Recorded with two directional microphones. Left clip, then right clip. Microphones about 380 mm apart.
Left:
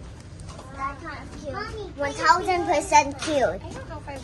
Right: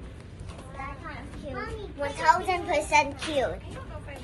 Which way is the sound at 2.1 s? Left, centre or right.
Left.